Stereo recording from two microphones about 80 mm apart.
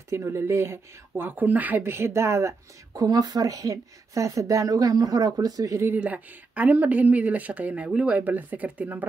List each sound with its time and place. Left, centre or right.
0.1 s speech: right
1.8 s speech: right
2.9 s speech: right
5.9 s speech: centre